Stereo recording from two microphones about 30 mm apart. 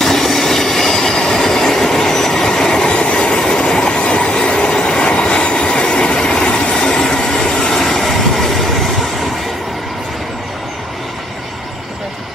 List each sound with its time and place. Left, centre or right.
0.0 s train: centre; by 6.1 s left
6.2 s vehicle: left; by 8.6 s centre